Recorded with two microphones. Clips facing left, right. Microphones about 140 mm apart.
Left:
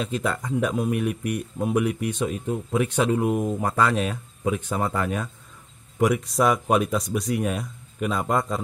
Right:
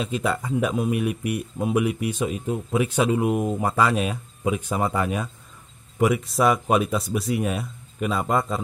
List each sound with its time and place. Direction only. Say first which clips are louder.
0.0 s speech: right 1 dB; 5° right (ahead or behind)